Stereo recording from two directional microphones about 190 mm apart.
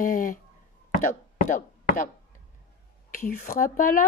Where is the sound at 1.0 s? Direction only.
45° left (ahead or behind).